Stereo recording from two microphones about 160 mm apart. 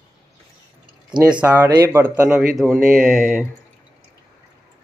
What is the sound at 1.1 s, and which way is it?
Speech, 25° right (ahead or behind).